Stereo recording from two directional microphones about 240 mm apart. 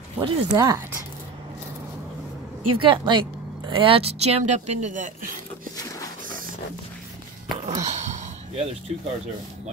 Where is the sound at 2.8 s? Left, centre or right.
Right.